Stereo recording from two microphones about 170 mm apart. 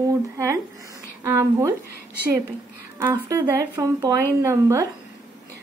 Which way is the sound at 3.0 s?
15° right (ahead or behind).